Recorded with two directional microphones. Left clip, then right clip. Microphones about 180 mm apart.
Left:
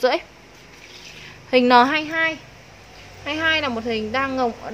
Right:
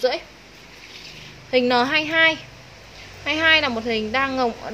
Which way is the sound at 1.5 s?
25° left (ahead or behind).